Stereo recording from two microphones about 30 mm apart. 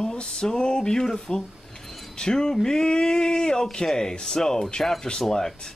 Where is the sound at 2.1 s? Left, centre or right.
Left.